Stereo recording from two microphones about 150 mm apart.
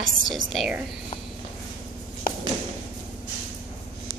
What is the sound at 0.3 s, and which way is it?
Speech, centre (ahead or behind).